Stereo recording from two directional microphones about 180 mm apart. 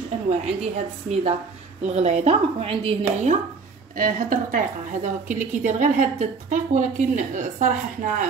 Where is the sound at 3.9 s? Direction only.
50° right (ahead or behind).